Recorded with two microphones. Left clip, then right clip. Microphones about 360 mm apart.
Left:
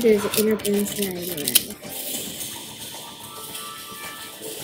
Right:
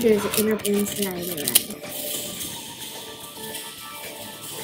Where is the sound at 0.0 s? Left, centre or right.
Centre.